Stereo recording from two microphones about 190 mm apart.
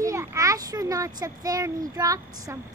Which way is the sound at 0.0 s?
15° right (ahead or behind).